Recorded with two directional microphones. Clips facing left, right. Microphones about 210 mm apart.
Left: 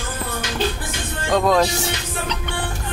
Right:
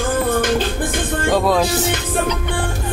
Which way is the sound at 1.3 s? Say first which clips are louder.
Even; 5° right (ahead or behind).